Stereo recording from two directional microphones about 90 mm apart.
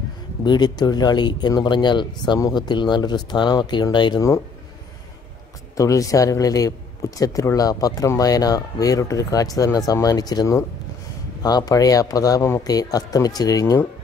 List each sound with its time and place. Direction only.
0.4 s speech: 55° left (ahead or behind)
5.8 s a man's voice: 40° left (ahead or behind)